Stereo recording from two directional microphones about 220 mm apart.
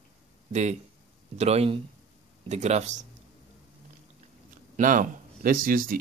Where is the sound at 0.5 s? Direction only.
30° right (ahead or behind).